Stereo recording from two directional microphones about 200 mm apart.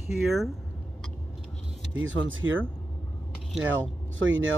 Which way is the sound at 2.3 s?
75° right (ahead or behind).